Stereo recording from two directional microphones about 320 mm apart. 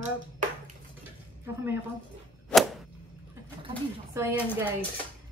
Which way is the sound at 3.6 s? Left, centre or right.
Centre.